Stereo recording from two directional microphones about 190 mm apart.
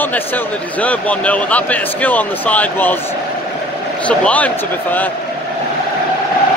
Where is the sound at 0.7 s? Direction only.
5° left (ahead or behind).